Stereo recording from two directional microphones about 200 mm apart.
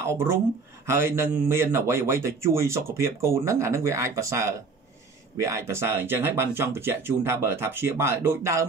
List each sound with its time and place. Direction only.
0.0 s a man's voice: 15° right (ahead or behind)